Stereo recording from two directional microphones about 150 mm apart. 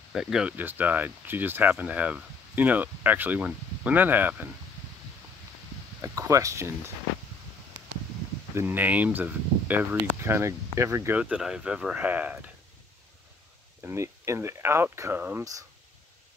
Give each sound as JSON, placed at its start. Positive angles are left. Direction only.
{"t": 0.1, "sound": "speech", "side_deg": -5}
{"t": 5.9, "sound": "speech", "side_deg": -20}
{"t": 8.5, "sound": "speech", "side_deg": -15}
{"t": 13.8, "sound": "speech", "side_deg": -20}